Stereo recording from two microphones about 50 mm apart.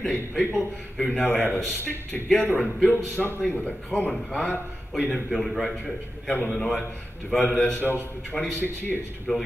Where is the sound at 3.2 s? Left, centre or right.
Left.